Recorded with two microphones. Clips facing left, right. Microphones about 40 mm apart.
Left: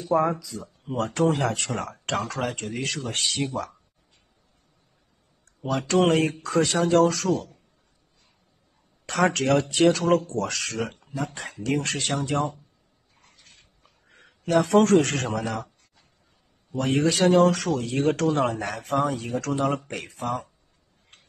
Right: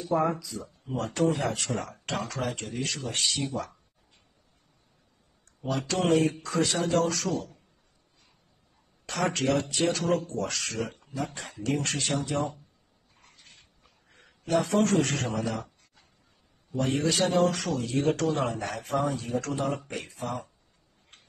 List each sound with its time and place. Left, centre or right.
0.8 s speech: left
3.2 s speech: left
5.6 s speech: left
9.0 s speech: left
9.8 s speech: left
10.4 s speech: left
11.6 s speech: left
14.0 s a man's voice: left
16.7 s speech: left
17.3 s speech: left
20.2 s speech: left